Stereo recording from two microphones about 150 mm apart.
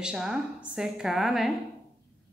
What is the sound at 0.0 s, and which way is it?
A woman's voice, 5° right (ahead or behind).